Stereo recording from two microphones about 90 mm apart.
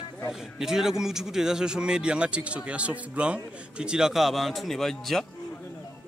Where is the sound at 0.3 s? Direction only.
5° right (ahead or behind).